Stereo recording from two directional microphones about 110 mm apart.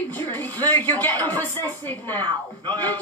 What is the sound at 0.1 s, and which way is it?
Speech, 15° left (ahead or behind).